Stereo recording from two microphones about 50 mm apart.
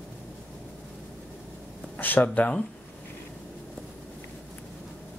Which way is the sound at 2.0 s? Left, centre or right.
Left.